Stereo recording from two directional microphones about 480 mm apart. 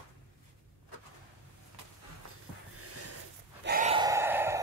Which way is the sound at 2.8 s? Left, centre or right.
Right.